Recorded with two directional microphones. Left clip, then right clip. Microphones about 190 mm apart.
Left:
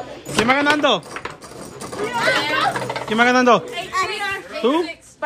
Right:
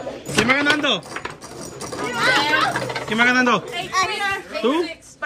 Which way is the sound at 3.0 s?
15° left (ahead or behind).